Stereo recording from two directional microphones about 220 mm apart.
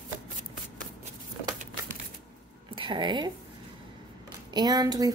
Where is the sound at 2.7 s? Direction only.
20° right (ahead or behind).